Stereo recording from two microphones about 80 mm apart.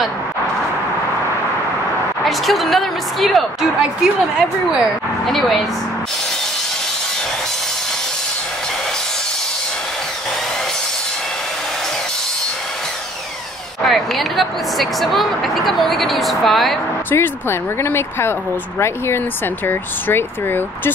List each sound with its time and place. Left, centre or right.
2.2 s speech: centre
13.8 s speech: centre
17.1 s speech: left